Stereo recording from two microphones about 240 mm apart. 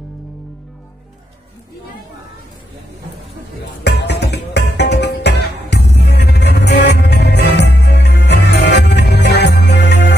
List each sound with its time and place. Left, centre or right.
3.8 s music: left